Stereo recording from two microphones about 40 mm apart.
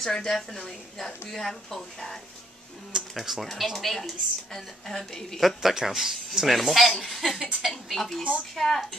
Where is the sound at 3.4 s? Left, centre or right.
Centre.